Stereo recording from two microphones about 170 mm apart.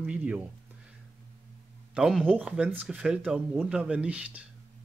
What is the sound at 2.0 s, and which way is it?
Speech, 5° right (ahead or behind).